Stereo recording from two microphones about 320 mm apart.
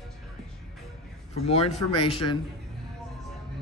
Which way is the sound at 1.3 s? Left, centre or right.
Centre.